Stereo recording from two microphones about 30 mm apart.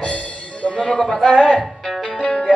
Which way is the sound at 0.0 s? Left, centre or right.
Left.